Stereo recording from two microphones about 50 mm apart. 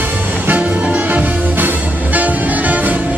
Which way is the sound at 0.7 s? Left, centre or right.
Right.